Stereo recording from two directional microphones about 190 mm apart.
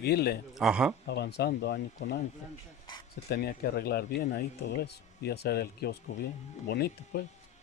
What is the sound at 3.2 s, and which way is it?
Speech, 55° left (ahead or behind).